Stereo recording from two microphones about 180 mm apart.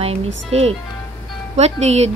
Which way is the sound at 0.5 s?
35° right (ahead or behind).